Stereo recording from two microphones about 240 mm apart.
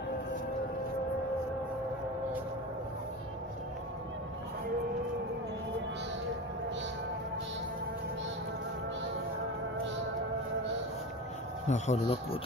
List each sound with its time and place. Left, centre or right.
11.6 s speech: left